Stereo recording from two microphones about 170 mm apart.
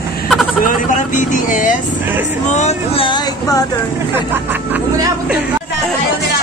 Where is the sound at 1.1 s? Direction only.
50° left (ahead or behind).